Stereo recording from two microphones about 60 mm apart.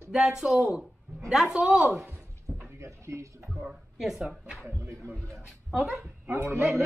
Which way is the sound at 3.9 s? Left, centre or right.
Centre.